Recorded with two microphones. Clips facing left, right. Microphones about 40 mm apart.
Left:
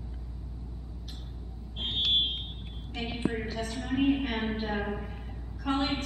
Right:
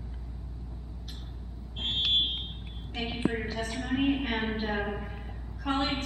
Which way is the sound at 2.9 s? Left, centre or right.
Centre.